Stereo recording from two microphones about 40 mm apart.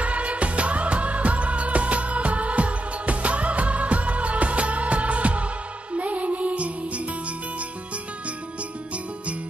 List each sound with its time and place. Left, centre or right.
0.0 s music: right